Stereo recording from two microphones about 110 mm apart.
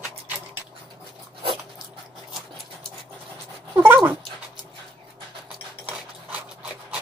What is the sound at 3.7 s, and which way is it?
Dog, 20° right (ahead or behind).